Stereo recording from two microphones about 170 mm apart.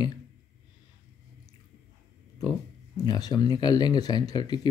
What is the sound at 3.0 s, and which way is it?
Speech, 25° left (ahead or behind).